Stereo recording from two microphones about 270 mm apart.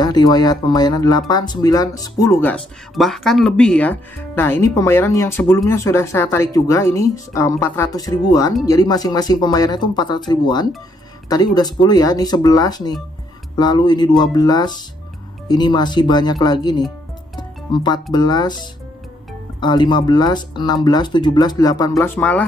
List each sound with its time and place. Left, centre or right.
0.0 s speech: centre
17.4 s music: centre
18.1 s speech: centre